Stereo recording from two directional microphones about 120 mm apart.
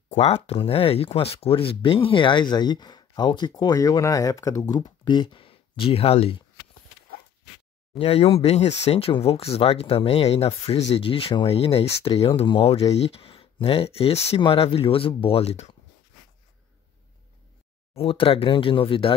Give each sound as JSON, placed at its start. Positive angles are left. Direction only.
{"t": 0.1, "sound": "speech", "side_deg": 60}
{"t": 7.9, "sound": "speech", "side_deg": 55}
{"t": 17.9, "sound": "speech", "side_deg": 50}